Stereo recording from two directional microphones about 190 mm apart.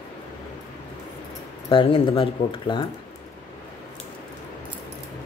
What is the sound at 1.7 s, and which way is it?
Speech, 30° left (ahead or behind).